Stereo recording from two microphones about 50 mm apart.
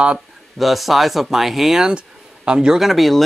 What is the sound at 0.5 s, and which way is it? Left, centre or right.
Speech, centre.